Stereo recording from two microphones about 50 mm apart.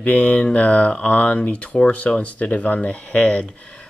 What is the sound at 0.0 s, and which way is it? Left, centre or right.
Speech, left.